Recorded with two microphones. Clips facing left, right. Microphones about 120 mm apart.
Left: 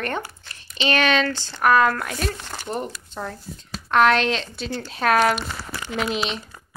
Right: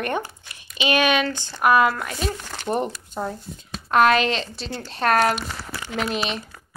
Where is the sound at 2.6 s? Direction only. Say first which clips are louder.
Right 5 dB; 25° right (ahead or behind).